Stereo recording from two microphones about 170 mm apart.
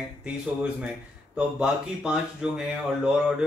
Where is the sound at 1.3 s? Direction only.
5° right (ahead or behind).